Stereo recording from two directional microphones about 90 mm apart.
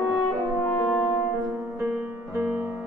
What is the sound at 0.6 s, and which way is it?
French horn, 10° left (ahead or behind).